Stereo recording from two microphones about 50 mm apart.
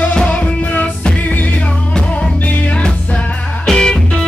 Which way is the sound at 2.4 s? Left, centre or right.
Left.